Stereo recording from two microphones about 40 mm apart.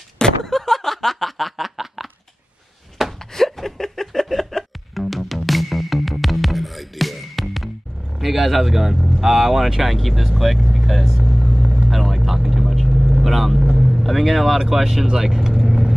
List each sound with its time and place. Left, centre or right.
0.2 s snicker: centre
3.2 s music: centre
8.2 s speech: centre
11.6 s vehicle: centre
11.9 s vehicle: centre